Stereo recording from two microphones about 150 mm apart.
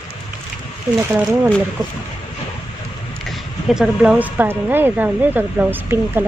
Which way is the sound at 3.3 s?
Centre (ahead or behind).